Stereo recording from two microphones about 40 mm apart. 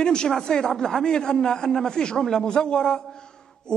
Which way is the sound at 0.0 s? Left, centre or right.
Centre.